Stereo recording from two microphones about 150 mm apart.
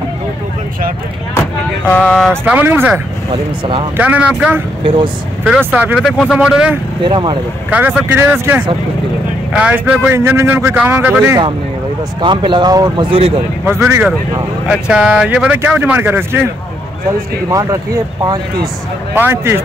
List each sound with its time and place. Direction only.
1.9 s speech: 5° left (ahead or behind)
2.5 s a man's voice: 15° right (ahead or behind)
4.8 s speech: 35° right (ahead or behind)
5.7 s a man's voice: 10° right (ahead or behind)
6.0 s speech: centre (ahead or behind)
7.0 s speech: 30° right (ahead or behind)
7.7 s a man's voice: 10° right (ahead or behind)
12.2 s a man's voice: 30° right (ahead or behind); by 14.0 s 15° right (ahead or behind)
14.7 s a man's voice: 5° right (ahead or behind)
17.5 s a man's voice: 20° right (ahead or behind)